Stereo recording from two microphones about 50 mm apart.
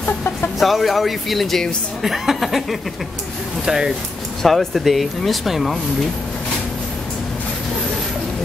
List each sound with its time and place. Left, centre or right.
0.0 s music: left
0.6 s speech: centre
4.4 s speech: centre